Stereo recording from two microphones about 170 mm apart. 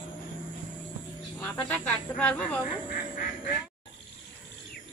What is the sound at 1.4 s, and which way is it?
Speech, 10° left (ahead or behind).